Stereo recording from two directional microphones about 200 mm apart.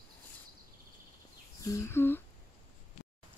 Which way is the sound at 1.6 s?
15° left (ahead or behind).